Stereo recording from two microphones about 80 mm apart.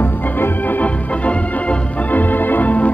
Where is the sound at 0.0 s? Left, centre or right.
Left.